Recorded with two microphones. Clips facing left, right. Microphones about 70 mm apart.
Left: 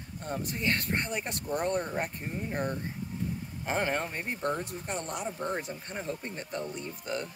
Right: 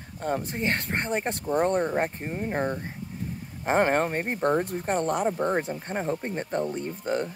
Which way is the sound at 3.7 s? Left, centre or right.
Right.